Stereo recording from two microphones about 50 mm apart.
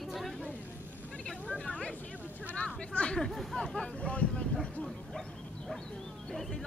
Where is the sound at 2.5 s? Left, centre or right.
Left.